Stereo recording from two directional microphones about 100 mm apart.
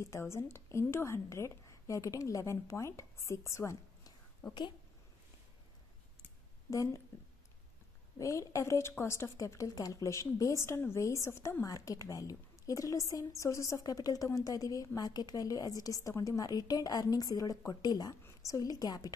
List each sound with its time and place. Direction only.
0.0 s a woman's voice: 30° left (ahead or behind)
6.7 s a woman's voice: 30° left (ahead or behind)
8.2 s a woman's voice: 30° left (ahead or behind)